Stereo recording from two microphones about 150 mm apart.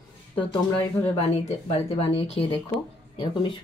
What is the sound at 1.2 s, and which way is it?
Speech, 40° left (ahead or behind).